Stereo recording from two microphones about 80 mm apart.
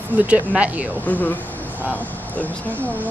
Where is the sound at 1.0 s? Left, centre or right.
Left.